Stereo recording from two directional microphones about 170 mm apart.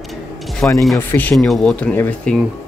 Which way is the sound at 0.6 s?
10° left (ahead or behind).